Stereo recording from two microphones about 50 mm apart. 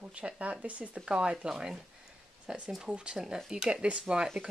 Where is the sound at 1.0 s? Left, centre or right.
Centre.